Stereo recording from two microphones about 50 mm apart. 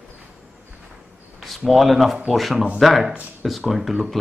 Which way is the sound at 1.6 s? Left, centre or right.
Centre.